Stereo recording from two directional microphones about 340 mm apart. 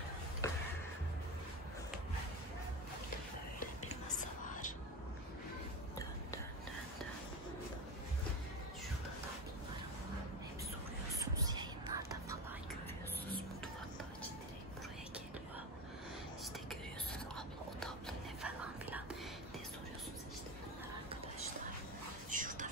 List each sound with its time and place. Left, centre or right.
0.4 s a sound: centre
11.1 s whispering: centre
17.1 s whispering: centre
22.3 s whispering: right